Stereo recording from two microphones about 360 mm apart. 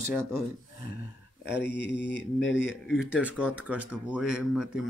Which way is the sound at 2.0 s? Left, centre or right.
Left.